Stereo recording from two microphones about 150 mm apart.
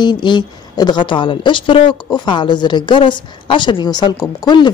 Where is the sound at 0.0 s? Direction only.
30° left (ahead or behind).